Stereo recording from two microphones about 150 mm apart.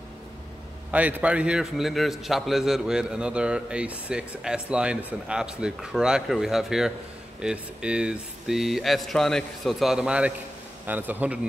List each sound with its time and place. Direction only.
0.9 s a man's voice: 10° right (ahead or behind)